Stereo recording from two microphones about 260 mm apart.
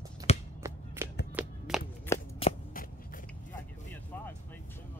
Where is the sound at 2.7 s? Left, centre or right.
Left.